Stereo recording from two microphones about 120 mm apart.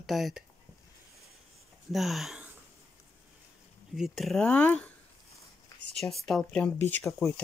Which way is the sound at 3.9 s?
Centre (ahead or behind).